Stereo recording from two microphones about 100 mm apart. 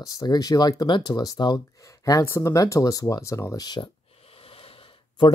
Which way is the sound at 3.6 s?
45° left (ahead or behind).